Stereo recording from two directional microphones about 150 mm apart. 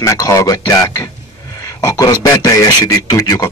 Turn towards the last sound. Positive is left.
turn(degrees=25)  # may be behind; listen again after turning